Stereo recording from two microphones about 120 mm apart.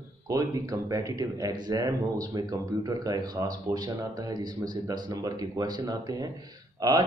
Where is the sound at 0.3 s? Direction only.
30° right (ahead or behind).